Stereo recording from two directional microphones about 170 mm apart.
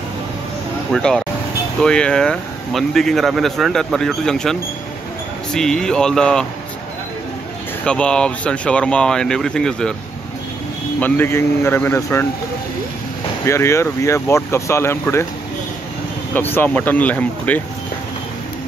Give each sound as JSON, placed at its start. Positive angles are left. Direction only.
{"t": 0.9, "sound": "speech", "side_deg": 5}
{"t": 7.8, "sound": "speech", "side_deg": 5}
{"t": 11.0, "sound": "speech", "side_deg": 10}
{"t": 13.5, "sound": "speech", "side_deg": 15}
{"t": 16.3, "sound": "speech", "side_deg": 10}